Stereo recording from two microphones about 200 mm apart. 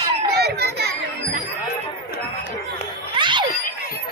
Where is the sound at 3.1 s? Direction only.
25° right (ahead or behind).